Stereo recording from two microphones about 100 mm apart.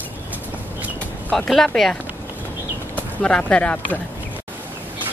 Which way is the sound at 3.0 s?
10° left (ahead or behind).